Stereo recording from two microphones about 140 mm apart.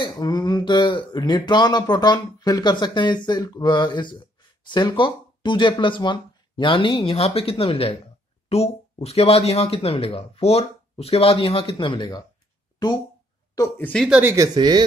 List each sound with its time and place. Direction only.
0.0 s speech: 30° left (ahead or behind)
13.6 s speech: 10° left (ahead or behind)
14.0 s speech: 5° right (ahead or behind)
14.3 s speech: 25° right (ahead or behind)